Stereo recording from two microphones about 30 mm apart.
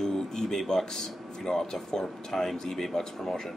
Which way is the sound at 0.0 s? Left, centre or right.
Left.